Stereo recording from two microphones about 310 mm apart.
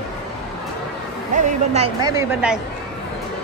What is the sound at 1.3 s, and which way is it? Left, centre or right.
A woman's voice, right.